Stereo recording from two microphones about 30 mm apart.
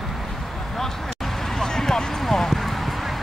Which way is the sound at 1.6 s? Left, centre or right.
Centre.